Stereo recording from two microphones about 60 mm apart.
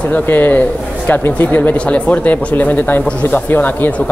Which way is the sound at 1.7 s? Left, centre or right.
Centre.